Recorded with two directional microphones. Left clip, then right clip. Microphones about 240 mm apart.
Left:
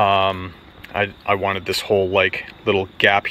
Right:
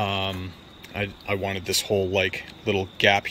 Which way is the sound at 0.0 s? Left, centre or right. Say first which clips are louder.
Left 11 dB; centre.